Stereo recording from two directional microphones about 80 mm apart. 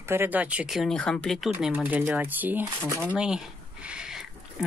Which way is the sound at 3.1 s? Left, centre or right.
Centre.